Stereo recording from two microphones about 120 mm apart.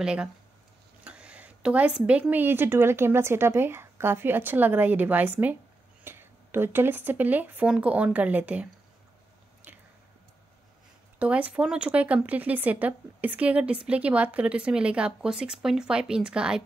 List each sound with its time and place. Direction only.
0.0 s speech: 5° right (ahead or behind)
11.1 s speech: 10° right (ahead or behind)